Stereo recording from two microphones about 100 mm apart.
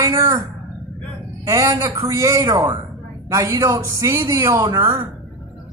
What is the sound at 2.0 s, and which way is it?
Speech, 30° right (ahead or behind).